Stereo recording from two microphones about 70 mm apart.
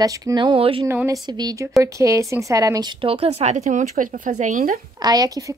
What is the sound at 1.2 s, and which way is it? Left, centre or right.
Speech, right.